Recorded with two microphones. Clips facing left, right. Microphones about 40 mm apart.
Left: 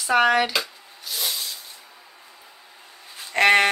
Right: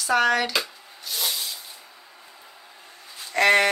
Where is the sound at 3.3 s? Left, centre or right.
Left.